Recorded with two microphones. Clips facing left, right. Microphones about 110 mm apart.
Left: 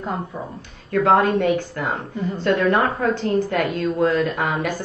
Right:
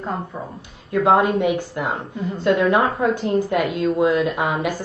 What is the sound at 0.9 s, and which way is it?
A woman's voice, 10° right (ahead or behind).